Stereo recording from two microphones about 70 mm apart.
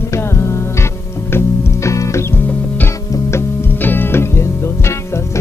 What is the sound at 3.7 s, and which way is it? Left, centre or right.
Music, left.